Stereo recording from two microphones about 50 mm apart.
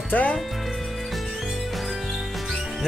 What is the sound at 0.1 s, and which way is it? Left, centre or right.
Speech, left.